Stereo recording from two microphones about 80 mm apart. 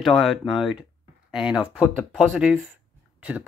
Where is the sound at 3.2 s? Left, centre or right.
Centre.